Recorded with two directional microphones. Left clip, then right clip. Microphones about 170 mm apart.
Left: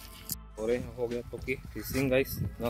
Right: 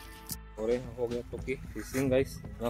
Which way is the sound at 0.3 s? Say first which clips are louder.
Even; centre (ahead or behind).